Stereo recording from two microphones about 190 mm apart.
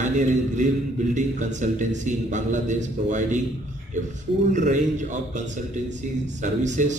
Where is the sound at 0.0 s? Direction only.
40° right (ahead or behind).